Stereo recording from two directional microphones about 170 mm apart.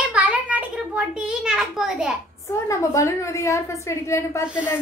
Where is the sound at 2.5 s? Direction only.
20° left (ahead or behind).